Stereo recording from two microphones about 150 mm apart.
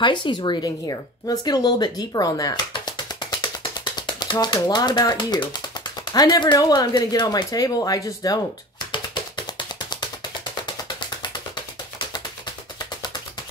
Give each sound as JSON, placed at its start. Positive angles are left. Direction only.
{"t": 0.0, "sound": "speech", "side_deg": 30}